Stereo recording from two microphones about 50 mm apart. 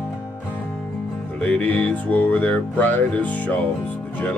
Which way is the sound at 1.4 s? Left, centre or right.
Left.